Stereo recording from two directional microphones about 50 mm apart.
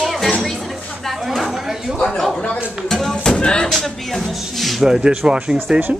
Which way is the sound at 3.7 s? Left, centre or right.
Centre.